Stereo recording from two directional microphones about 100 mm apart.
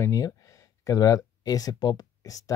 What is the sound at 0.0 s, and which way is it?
Speech, 35° left (ahead or behind).